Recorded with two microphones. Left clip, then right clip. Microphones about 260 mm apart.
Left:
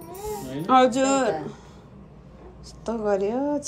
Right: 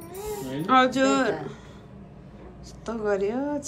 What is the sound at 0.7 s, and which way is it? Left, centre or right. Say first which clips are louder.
Speech: left 2 dB; centre.